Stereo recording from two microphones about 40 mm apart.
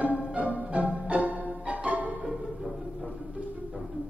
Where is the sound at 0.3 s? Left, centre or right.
Right.